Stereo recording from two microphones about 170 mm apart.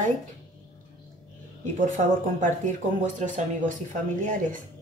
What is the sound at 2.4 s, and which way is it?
Speech, 45° right (ahead or behind).